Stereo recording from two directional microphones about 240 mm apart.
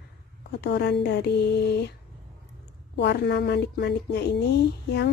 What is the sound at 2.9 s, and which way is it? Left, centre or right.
Speech, left.